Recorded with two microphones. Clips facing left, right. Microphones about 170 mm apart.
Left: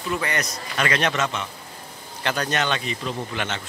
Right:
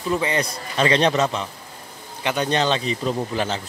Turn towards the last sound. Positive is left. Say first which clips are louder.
# right 5 dB
turn(degrees=-35)  # may be behind; listen again after turning